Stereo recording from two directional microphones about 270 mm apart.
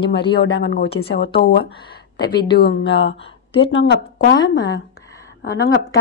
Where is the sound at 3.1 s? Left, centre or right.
Centre.